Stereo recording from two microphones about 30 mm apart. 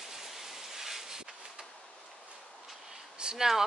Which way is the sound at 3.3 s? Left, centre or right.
Centre.